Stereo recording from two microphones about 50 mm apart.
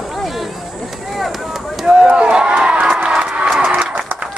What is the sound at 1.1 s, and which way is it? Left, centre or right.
Chop, centre.